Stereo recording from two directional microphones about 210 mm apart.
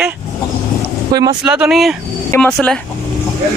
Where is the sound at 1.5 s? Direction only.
5° right (ahead or behind).